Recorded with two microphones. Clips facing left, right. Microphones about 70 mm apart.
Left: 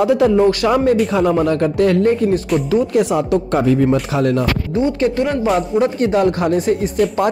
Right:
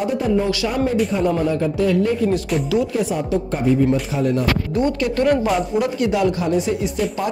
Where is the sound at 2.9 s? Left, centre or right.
Left.